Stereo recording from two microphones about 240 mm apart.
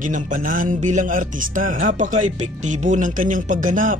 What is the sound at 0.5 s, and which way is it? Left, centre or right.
Speech, right.